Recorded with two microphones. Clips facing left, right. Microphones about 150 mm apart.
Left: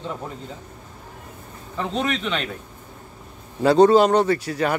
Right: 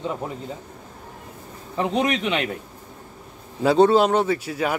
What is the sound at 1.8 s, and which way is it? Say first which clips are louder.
Speech: right 3 dB; 15° right (ahead or behind).